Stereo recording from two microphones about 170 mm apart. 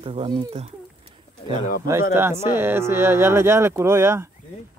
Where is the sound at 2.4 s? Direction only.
15° right (ahead or behind).